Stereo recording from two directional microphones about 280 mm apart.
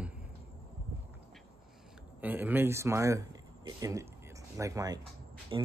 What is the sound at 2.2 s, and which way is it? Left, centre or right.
Speech, centre.